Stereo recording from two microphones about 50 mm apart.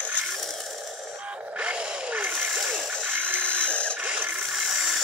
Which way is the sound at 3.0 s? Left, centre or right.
Right.